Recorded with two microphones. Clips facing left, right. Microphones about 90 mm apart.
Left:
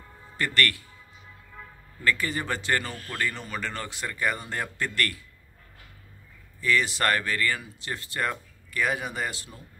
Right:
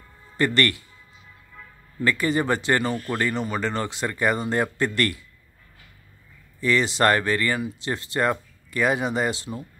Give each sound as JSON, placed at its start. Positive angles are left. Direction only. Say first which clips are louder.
{"t": 0.4, "sound": "speech", "louder": "right 5 dB", "side_deg": -25}
{"t": 2.0, "sound": "speech", "louder": "right 5 dB", "side_deg": -25}
{"t": 6.6, "sound": "speech", "louder": "right 5 dB", "side_deg": -25}